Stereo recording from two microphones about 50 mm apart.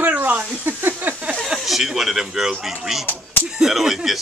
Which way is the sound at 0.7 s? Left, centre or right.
Right.